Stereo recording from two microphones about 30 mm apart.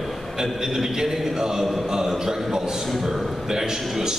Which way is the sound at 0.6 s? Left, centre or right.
Centre.